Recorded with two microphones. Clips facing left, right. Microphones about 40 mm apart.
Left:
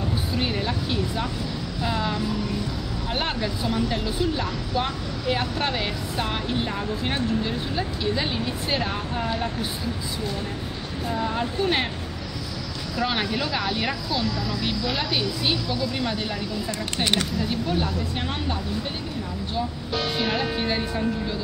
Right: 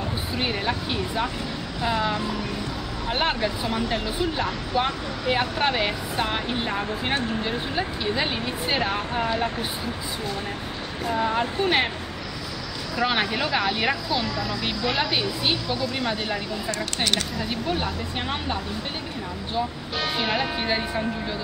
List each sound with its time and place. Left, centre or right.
0.3 s speech: centre
11.1 s speech: centre
12.9 s speech: centre
19.5 s speech: centre